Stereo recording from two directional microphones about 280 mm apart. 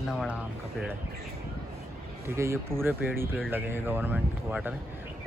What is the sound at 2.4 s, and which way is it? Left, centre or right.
Speech, centre.